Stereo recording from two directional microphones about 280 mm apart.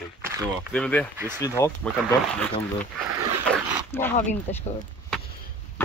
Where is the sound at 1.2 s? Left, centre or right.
Centre.